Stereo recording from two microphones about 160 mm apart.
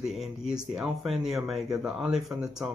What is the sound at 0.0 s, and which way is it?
Speech, centre (ahead or behind).